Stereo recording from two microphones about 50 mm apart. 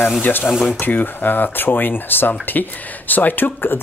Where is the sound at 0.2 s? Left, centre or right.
Left.